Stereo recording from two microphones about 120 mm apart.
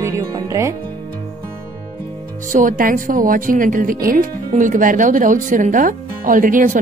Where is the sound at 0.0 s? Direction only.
25° right (ahead or behind).